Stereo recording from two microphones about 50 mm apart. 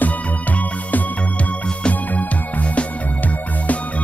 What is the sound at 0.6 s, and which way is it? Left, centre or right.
Music, left.